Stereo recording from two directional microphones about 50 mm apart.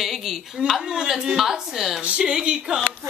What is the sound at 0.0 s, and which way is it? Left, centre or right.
Speech, centre.